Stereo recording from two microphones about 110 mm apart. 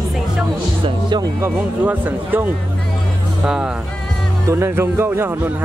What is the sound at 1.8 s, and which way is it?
Speech, 15° right (ahead or behind).